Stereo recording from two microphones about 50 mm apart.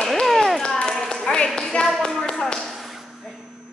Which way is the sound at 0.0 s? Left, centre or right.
Centre.